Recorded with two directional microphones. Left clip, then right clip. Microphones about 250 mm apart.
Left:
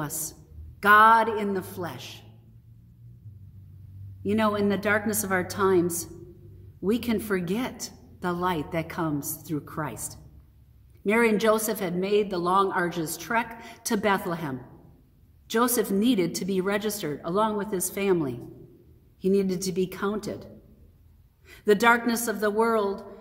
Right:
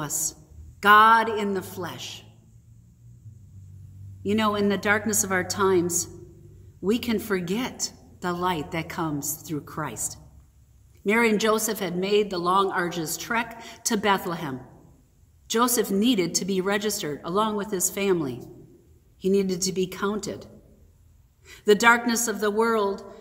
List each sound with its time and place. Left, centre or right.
0.0 s a woman's voice: centre
4.2 s a woman's voice: centre
21.5 s a woman's voice: centre